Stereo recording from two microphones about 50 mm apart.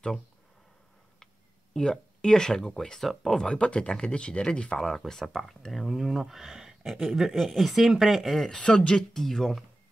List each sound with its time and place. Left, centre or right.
1.8 s speech: centre
3.4 s speech: left
4.8 s speech: centre
8.5 s speech: centre
9.1 s speech: centre